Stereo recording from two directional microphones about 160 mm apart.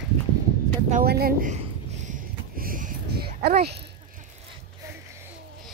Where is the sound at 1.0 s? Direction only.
75° right (ahead or behind).